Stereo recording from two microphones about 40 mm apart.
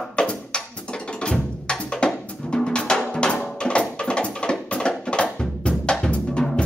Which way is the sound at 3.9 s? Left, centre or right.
Left.